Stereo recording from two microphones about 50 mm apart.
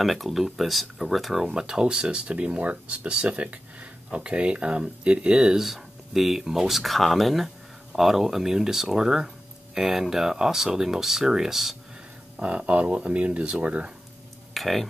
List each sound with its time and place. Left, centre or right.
0.0 s speech: centre
1.4 s speech: centre
5.7 s speech: centre
12.4 s speech: right
14.5 s speech: centre